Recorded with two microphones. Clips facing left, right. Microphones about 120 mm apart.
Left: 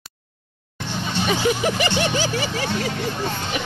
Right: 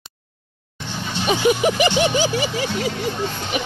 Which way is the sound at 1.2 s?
20° right (ahead or behind).